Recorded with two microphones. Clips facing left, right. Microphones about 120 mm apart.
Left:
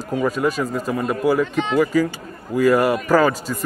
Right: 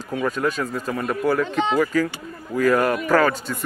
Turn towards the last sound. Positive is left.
turn(degrees=5)  # may be behind; listen again after turning